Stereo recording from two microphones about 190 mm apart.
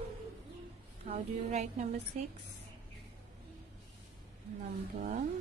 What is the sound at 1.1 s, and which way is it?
A woman's voice, 35° right (ahead or behind).